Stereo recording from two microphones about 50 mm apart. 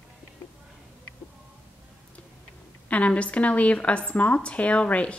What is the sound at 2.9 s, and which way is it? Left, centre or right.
A woman's voice, left.